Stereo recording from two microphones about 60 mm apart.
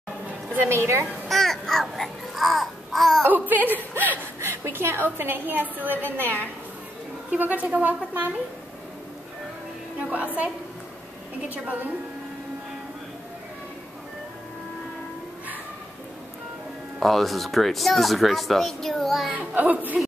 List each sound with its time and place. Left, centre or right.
0.7 s a woman's voice: right
1.3 s babbling: centre
3.3 s a woman's voice: right
9.9 s a child's voice: right
17.0 s speech: centre
19.3 s a child's voice: right